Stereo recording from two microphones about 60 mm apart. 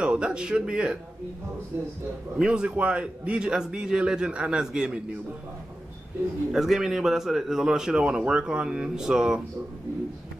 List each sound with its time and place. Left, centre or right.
0.0 s a man's voice: centre
2.3 s a man's voice: centre
6.5 s a man's voice: centre